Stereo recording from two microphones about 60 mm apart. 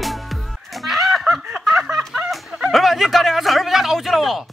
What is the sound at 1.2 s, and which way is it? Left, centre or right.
Snicker, centre.